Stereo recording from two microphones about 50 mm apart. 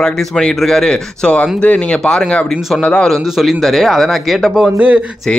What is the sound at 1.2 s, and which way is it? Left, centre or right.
Speech, left.